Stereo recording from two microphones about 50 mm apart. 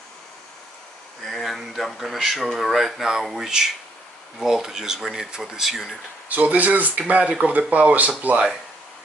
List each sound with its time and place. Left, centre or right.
1.2 s speech: centre
6.2 s speech: right